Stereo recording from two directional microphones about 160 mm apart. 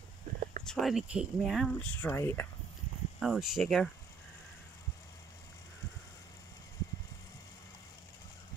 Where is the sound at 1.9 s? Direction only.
10° left (ahead or behind).